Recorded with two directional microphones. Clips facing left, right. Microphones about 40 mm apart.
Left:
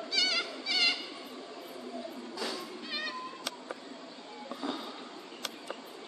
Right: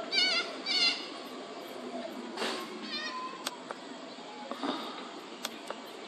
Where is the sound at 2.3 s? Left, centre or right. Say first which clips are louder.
Right 2 dB; right.